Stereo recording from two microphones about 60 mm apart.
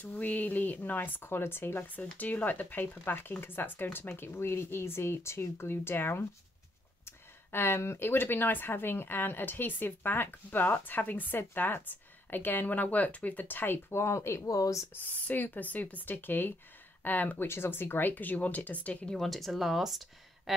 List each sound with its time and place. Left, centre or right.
0.0 s speech: left
14.5 s speech: left
15.0 s speech: left
17.5 s speech: left
19.1 s speech: centre